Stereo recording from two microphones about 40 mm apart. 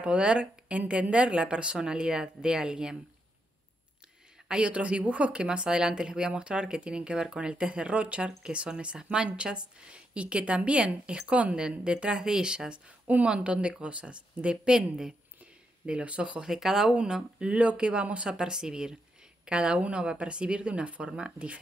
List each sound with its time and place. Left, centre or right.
0.0 s speech: right
4.5 s speech: right
5.3 s speech: right
14.7 s a woman's voice: centre
15.9 s speech: right
16.4 s a woman's voice: centre
17.4 s speech: right
17.7 s a woman's voice: right